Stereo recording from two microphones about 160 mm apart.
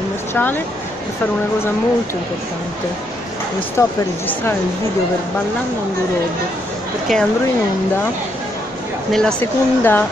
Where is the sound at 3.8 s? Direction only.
15° left (ahead or behind).